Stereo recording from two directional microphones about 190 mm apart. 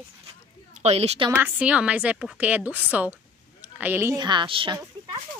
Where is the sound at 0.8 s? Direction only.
35° right (ahead or behind).